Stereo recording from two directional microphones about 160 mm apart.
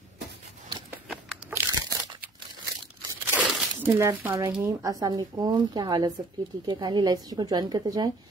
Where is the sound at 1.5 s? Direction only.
20° right (ahead or behind).